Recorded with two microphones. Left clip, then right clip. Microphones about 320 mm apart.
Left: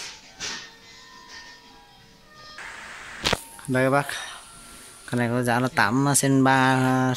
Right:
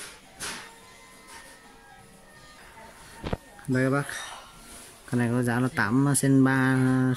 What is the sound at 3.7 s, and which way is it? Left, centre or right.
Speech, centre.